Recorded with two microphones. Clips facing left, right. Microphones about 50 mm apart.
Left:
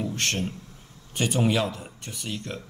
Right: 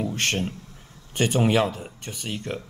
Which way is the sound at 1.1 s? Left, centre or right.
Right.